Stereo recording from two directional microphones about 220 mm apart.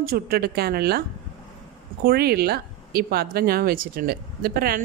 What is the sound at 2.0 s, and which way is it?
Speech, 45° right (ahead or behind).